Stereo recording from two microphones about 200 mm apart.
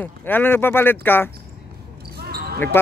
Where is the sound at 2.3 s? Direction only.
50° right (ahead or behind).